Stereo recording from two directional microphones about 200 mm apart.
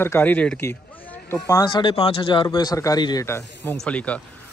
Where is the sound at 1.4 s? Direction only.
20° left (ahead or behind).